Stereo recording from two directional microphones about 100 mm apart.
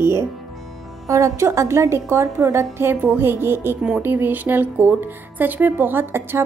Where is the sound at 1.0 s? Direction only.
30° right (ahead or behind).